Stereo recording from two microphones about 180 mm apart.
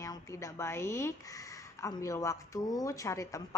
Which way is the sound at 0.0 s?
15° left (ahead or behind).